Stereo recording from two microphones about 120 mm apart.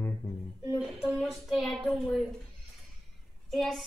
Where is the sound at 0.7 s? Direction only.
10° right (ahead or behind).